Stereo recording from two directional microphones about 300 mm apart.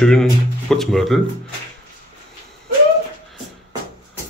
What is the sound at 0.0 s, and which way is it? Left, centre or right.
Speech, centre.